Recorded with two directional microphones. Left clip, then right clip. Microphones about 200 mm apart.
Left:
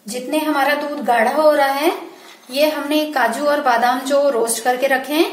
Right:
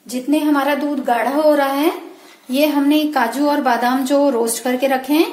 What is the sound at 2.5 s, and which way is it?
A woman's voice, 35° right (ahead or behind).